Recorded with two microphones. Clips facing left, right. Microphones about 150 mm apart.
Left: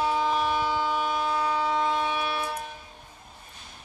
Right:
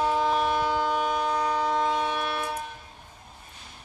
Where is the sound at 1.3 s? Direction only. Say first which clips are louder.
Right 1 dB; 15° right (ahead or behind).